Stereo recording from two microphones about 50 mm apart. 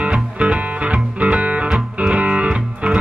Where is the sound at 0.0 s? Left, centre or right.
Right.